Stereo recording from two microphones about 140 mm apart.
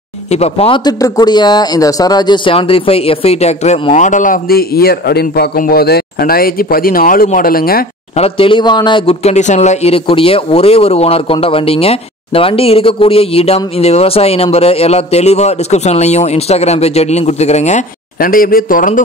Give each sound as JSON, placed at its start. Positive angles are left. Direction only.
{"t": 0.3, "sound": "speech", "side_deg": 45}
{"t": 0.8, "sound": "speech", "side_deg": 30}
{"t": 3.9, "sound": "a man's voice", "side_deg": 60}
{"t": 8.2, "sound": "speech", "side_deg": 40}
{"t": 9.2, "sound": "speech", "side_deg": 55}
{"t": 18.2, "sound": "a man's voice", "side_deg": 90}